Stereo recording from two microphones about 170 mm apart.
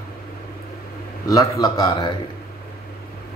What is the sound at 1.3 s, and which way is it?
Speech, 20° left (ahead or behind).